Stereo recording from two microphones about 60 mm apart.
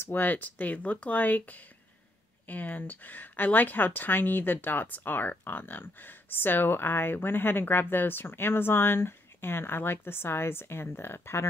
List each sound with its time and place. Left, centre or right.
0.0 s speech: left